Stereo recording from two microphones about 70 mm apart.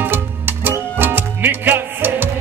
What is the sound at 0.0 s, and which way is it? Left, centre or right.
Music, right.